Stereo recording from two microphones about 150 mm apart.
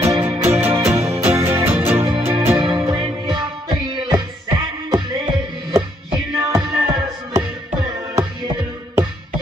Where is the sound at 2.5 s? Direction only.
30° right (ahead or behind).